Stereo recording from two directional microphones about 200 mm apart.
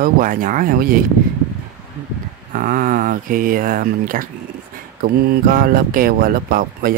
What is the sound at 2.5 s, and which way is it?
Speech, 45° right (ahead or behind).